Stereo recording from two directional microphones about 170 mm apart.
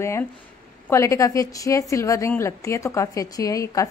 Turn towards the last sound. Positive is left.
turn(degrees=20)  # may be behind; listen again after turning